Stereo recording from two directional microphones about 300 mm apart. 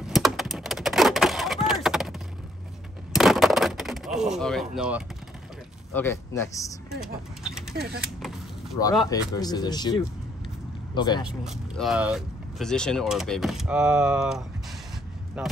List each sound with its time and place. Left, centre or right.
0.0 s a sound: centre
5.9 s speech: centre
7.4 s a sound: centre
7.7 s speech: right
9.1 s speech: centre
11.2 s speech: centre